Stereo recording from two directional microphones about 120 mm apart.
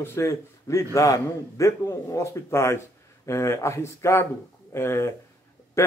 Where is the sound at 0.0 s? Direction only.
25° left (ahead or behind).